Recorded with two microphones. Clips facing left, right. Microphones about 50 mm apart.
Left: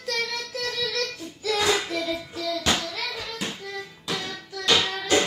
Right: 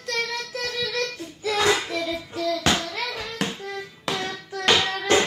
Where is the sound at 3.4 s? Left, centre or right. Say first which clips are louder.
Right 3 dB; right.